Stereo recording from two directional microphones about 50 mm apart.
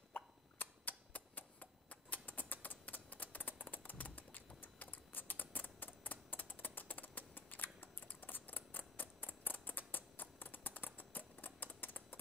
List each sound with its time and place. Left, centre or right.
0.1 s hiccup: left